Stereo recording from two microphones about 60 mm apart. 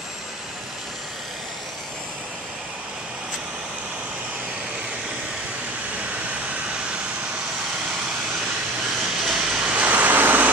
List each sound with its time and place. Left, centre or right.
9.2 s vehicle: centre
9.7 s vehicle: right